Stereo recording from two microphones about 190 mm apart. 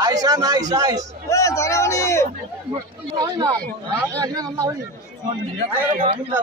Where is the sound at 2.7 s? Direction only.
20° right (ahead or behind).